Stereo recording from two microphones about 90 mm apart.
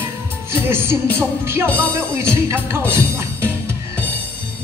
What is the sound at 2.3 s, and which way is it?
Speech, 25° right (ahead or behind).